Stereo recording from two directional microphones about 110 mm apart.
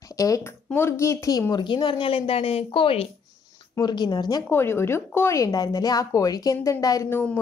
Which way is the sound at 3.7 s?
40° left (ahead or behind).